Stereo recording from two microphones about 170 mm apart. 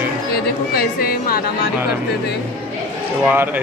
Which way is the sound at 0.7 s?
60° left (ahead or behind).